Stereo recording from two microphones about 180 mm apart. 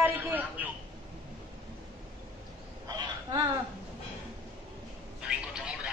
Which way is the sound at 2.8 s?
25° right (ahead or behind).